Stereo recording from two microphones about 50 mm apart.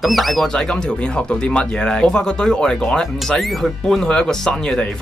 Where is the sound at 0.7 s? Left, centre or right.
Left.